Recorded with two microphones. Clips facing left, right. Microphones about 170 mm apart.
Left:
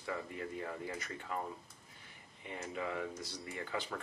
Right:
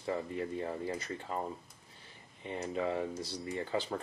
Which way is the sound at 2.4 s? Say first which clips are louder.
Right 6 dB; 30° right (ahead or behind).